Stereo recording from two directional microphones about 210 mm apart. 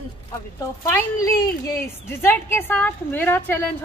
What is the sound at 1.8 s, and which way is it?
A woman's voice, 10° left (ahead or behind).